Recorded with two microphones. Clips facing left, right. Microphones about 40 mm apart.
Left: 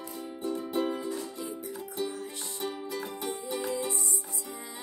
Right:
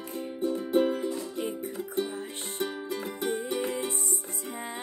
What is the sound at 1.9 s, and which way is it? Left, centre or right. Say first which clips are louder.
Music: right 2 dB; right.